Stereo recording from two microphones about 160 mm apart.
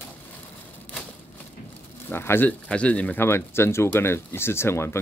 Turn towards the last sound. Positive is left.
turn(degrees=15)  # may be behind; listen again after turning